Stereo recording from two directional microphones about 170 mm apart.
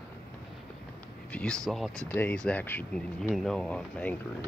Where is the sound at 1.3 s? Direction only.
5° left (ahead or behind).